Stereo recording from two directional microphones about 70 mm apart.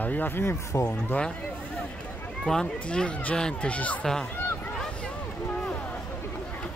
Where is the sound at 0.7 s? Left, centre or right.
Left.